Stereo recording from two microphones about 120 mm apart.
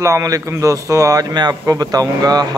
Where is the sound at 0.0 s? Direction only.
25° right (ahead or behind).